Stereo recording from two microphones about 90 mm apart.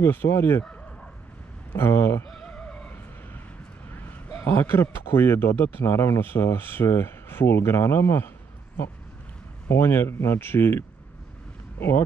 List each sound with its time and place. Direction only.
0.0 s a man's voice: 25° left (ahead or behind)
1.7 s a man's voice: 25° left (ahead or behind)
2.2 s music: 10° left (ahead or behind)
3.9 s a man's voice: 20° left (ahead or behind)
9.7 s a man's voice: 25° left (ahead or behind)